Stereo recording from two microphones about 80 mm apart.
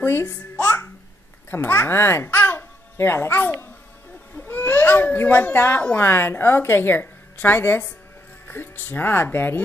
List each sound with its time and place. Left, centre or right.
0.0 s a child's voice: left